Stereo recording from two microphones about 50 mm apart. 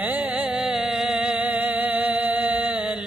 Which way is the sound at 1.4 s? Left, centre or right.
Right.